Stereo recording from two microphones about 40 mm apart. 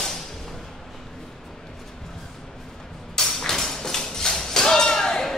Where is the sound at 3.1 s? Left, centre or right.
Centre.